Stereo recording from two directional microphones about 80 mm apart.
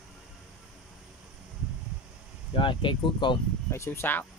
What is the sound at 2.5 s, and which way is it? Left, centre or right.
Speech, left.